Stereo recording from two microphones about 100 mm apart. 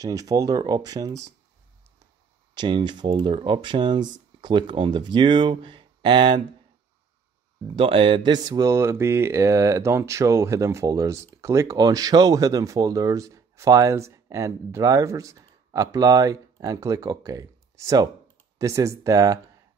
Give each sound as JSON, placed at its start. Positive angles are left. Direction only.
{"t": 0.0, "sound": "speech", "side_deg": -35}
{"t": 2.5, "sound": "speech", "side_deg": -50}
{"t": 3.1, "sound": "speech", "side_deg": -70}
{"t": 7.7, "sound": "speech", "side_deg": -60}
{"t": 8.7, "sound": "speech", "side_deg": -25}